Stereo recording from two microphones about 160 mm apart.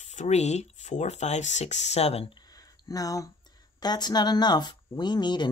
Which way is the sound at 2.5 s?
25° left (ahead or behind).